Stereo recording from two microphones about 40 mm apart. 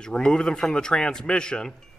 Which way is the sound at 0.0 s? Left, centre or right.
Centre.